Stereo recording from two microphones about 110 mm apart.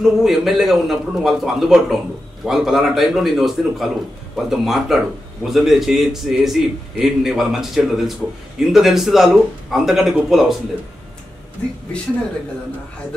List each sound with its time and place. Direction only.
0.0 s speech: centre (ahead or behind)